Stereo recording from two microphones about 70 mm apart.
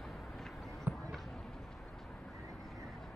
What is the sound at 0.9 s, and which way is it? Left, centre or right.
Basketball bounce, right.